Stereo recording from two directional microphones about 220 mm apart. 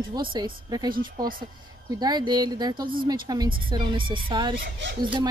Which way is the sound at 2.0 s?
20° right (ahead or behind).